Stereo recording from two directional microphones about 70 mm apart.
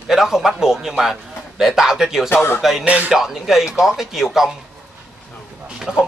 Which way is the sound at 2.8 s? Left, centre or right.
Centre.